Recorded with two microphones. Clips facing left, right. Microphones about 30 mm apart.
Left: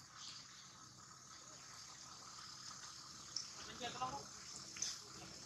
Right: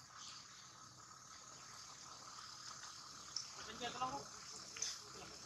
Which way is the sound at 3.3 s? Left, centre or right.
Centre.